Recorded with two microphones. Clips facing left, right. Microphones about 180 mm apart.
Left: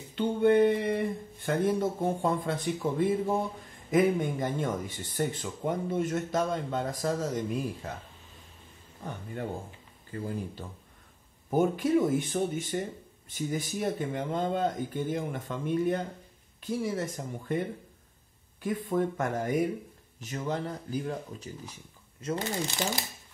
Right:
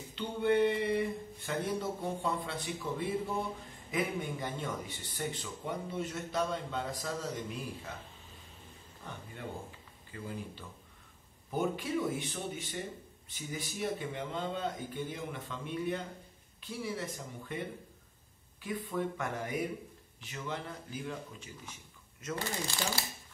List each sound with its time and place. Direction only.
0.1 s speech: 50° left (ahead or behind)
9.0 s speech: 45° left (ahead or behind)
18.6 s speech: 45° left (ahead or behind); by 22.8 s 30° left (ahead or behind)